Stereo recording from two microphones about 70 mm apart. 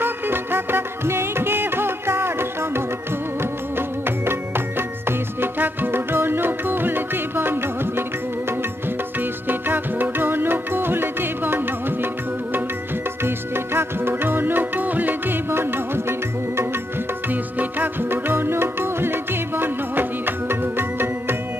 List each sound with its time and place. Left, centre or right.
0.0 s music: right
9.2 s music: right
13.7 s music: right